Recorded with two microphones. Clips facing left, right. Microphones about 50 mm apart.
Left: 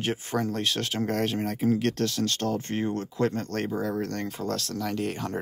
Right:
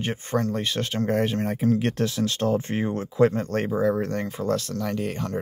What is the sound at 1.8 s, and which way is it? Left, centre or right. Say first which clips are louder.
Speech: right 2 dB; centre.